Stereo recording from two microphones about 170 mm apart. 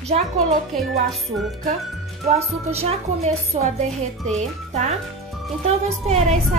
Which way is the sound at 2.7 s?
40° right (ahead or behind).